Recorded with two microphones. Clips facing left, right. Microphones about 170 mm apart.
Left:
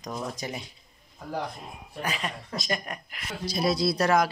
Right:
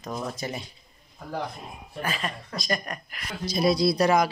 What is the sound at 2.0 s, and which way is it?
Speech, 20° left (ahead or behind).